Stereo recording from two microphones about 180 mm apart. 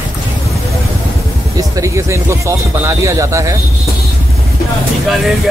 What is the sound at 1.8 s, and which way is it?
Speech, 15° right (ahead or behind).